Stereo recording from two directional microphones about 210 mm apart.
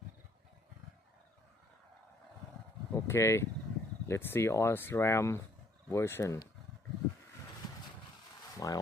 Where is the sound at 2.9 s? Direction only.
15° left (ahead or behind).